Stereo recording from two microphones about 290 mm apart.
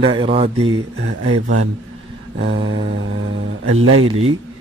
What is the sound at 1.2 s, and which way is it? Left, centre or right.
Speech, right.